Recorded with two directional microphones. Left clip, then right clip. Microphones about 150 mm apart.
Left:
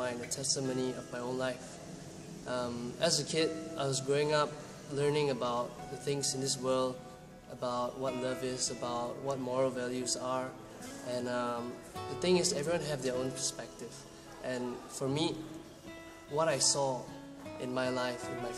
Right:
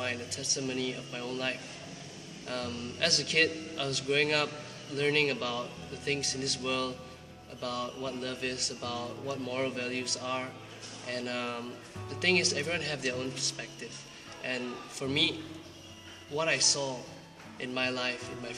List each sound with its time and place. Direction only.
0.0 s speech: 20° left (ahead or behind)
2.6 s speech: 20° left (ahead or behind)
16.3 s speech: 15° left (ahead or behind)